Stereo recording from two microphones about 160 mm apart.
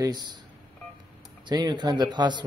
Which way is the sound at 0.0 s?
25° right (ahead or behind).